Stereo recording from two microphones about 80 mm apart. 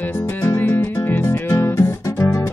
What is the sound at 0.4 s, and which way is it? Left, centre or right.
Music, left.